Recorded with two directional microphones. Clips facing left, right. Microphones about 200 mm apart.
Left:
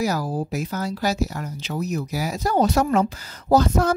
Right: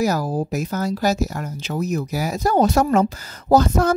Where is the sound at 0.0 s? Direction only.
45° right (ahead or behind).